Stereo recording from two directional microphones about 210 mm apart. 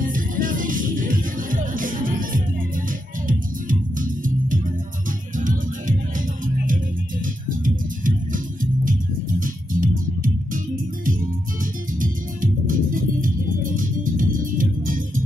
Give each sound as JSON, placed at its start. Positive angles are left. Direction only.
{"t": 0.0, "sound": "music", "side_deg": -40}
{"t": 12.0, "sound": "music", "side_deg": -40}